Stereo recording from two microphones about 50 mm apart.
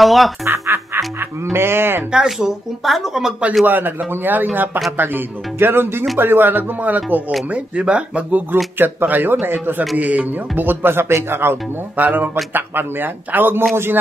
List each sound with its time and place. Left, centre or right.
0.0 s speech: centre
0.7 s a sound: right
2.1 s speech: centre
3.6 s music: right
4.9 s speech: right
6.1 s music: right
7.5 s speech: right
8.7 s music: right
11.2 s speech: right
12.0 s music: right
12.5 s speech: right